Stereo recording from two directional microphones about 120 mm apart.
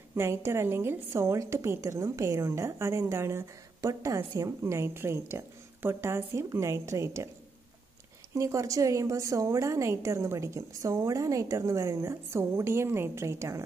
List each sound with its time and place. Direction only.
0.1 s a woman's voice: 20° right (ahead or behind)
8.4 s a woman's voice: 25° right (ahead or behind)